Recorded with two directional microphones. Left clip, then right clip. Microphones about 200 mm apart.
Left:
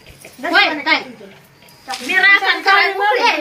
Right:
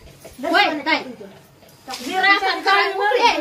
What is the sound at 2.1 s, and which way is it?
Speech, 10° right (ahead or behind).